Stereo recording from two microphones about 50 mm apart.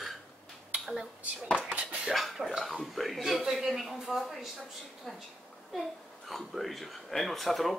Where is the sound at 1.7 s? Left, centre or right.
Right.